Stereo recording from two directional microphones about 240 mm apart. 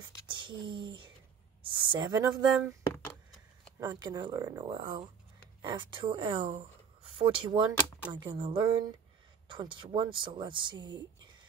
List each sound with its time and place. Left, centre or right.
0.3 s speech: centre
3.8 s speech: centre